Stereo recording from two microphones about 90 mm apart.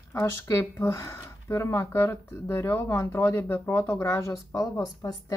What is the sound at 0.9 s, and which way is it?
Speech, 35° left (ahead or behind).